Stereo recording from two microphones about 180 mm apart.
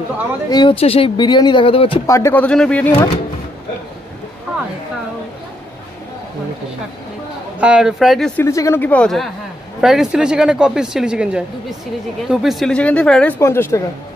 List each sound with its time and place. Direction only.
0.5 s speech: 25° left (ahead or behind)
2.0 s speech: 15° left (ahead or behind)
7.6 s speech: 5° right (ahead or behind)
8.4 s speech: 15° left (ahead or behind)